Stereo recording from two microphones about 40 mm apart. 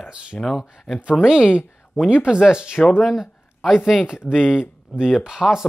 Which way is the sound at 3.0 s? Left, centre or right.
Centre.